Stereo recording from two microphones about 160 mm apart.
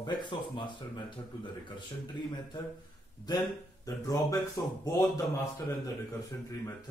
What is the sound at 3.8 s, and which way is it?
Speech, 20° left (ahead or behind).